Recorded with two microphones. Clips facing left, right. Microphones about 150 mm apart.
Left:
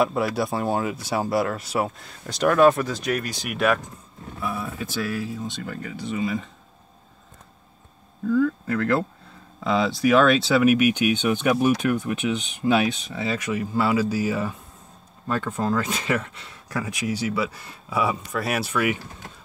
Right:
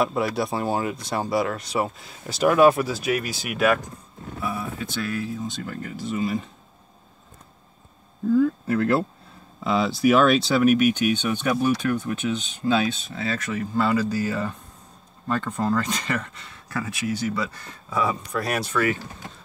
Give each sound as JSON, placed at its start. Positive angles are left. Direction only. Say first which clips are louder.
{"t": 0.0, "sound": "speech", "louder": "left 1 dB", "side_deg": 0}
{"t": 9.6, "sound": "speech", "louder": "even", "side_deg": -5}